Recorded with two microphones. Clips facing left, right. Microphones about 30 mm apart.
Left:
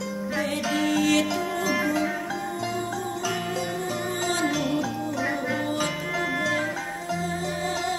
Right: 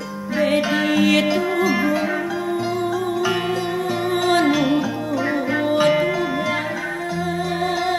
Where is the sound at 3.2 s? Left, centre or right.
Right.